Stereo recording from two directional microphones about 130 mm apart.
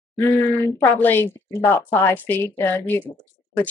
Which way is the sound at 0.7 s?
20° left (ahead or behind).